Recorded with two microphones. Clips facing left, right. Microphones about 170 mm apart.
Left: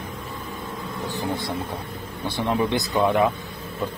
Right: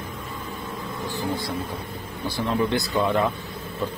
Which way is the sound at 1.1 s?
20° left (ahead or behind).